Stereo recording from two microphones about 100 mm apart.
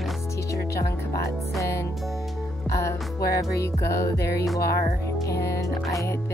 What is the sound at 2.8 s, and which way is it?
Music, 30° left (ahead or behind).